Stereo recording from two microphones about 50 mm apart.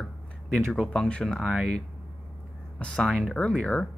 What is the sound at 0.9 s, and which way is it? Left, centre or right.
Speech, centre.